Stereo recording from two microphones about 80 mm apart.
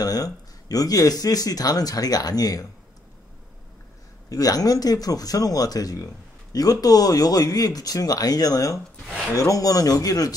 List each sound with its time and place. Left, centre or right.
0.0 s speech: left
4.3 s speech: left
8.7 s speech: centre
9.3 s speech: left